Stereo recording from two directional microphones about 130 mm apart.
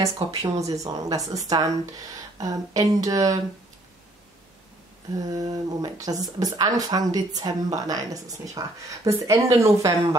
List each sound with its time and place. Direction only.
0.0 s a woman's voice: 25° right (ahead or behind)
5.1 s a woman's voice: 30° right (ahead or behind)